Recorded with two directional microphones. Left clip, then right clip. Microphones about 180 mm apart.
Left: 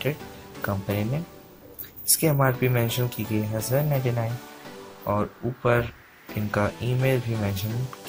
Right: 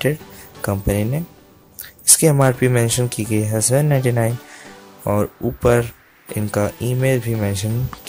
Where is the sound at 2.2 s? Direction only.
50° right (ahead or behind).